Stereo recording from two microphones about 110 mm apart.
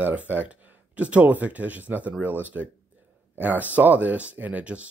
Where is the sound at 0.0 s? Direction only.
15° right (ahead or behind).